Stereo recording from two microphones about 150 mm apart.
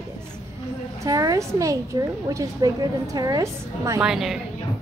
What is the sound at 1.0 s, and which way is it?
A woman's voice, 25° right (ahead or behind).